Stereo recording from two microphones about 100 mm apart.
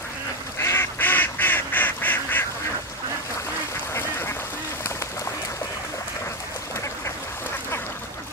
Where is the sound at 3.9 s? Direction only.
25° left (ahead or behind).